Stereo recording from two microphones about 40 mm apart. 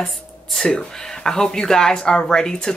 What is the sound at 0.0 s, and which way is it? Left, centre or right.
Speech, centre.